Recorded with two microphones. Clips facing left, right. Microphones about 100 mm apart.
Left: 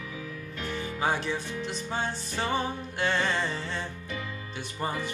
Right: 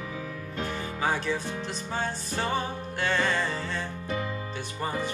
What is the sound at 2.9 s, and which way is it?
Music, 25° left (ahead or behind).